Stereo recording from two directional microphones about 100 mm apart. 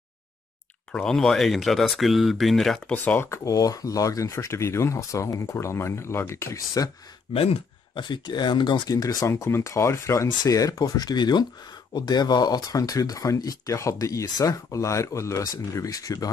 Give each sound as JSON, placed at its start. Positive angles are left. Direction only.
{"t": 0.9, "sound": "speech", "side_deg": 5}
{"t": 2.9, "sound": "speech", "side_deg": 20}
{"t": 3.5, "sound": "speech", "side_deg": 35}
{"t": 7.3, "sound": "speech", "side_deg": 75}
{"t": 8.0, "sound": "speech", "side_deg": 50}